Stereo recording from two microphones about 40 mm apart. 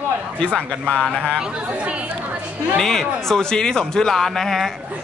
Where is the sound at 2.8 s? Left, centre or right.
Centre.